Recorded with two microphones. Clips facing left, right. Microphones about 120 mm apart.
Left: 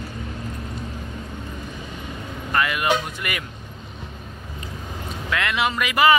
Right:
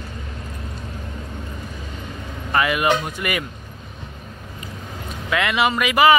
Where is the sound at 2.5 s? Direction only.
5° right (ahead or behind).